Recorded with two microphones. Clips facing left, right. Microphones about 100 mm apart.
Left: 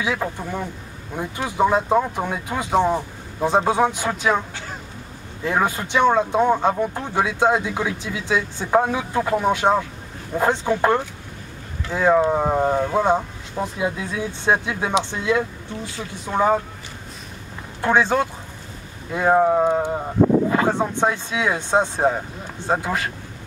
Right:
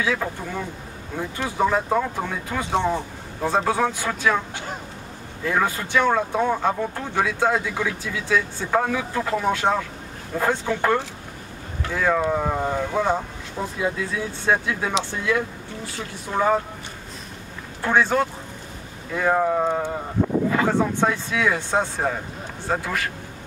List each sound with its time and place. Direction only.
0.0 s speech: 15° left (ahead or behind)
5.4 s speech: 20° left (ahead or behind)
17.8 s speech: 20° left (ahead or behind)